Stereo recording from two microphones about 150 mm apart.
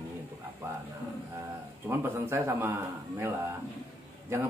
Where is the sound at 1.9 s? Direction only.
15° right (ahead or behind).